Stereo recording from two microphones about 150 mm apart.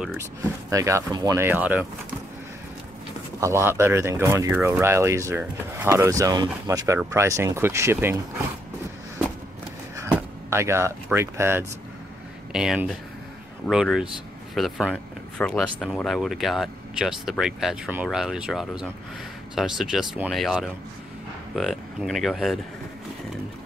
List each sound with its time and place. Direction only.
0.2 s speech: 20° right (ahead or behind)
3.3 s speech: 20° right (ahead or behind)
9.9 s a sound: 20° right (ahead or behind)
11.1 s speech: 15° right (ahead or behind)
12.5 s speech: 5° right (ahead or behind)